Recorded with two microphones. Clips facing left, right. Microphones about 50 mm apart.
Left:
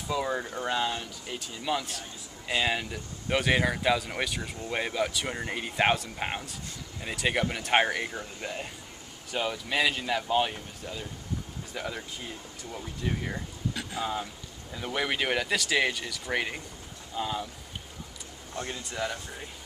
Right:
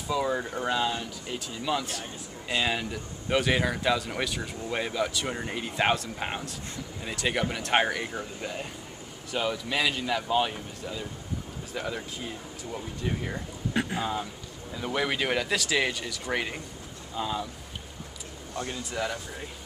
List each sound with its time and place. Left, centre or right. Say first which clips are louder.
0.1 s speech: right 2 dB; centre
13.7 s speech: right 9 dB; right
14.7 s speech: right 2 dB; centre
18.9 s speech: right 1 dB; centre